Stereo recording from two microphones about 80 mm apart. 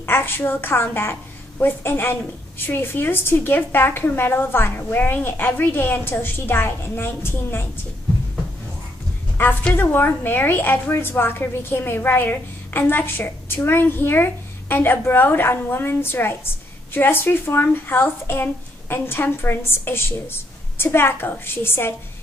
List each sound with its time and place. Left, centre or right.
0.0 s a woman's voice: left
9.4 s a woman's voice: left